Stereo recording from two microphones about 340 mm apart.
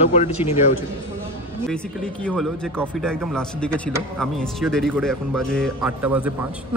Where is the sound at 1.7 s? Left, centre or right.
Centre.